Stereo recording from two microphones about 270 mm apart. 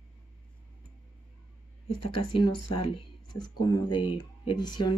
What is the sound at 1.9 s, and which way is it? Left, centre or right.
Speech, left.